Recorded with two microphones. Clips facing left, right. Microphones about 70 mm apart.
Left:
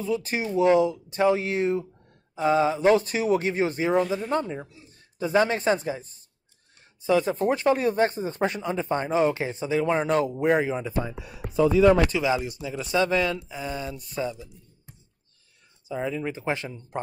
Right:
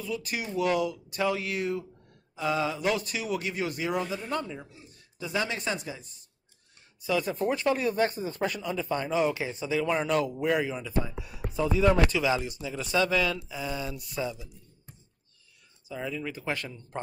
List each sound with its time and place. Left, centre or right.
0.0 s speech: left
11.1 s speech: left
12.1 s speech: left
15.9 s speech: left